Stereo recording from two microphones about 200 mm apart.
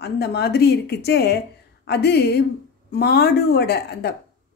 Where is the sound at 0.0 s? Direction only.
55° left (ahead or behind).